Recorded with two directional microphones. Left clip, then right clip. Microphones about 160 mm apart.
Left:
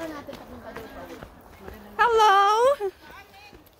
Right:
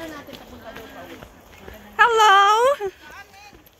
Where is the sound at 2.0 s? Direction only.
15° right (ahead or behind).